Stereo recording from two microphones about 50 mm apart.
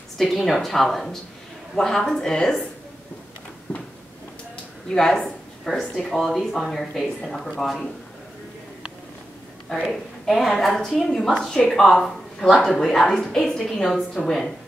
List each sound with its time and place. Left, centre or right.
0.2 s a woman's voice: centre
3.7 s a sound: left
4.8 s a woman's voice: centre
10.2 s a woman's voice: centre